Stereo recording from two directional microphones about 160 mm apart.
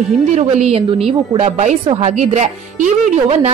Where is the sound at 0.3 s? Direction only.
45° right (ahead or behind).